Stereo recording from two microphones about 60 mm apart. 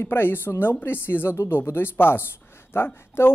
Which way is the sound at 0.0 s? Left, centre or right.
Left.